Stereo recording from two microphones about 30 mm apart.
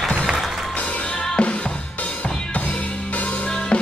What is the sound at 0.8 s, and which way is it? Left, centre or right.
Music, left.